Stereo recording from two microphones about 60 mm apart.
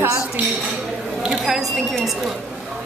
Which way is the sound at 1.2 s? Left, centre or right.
Centre.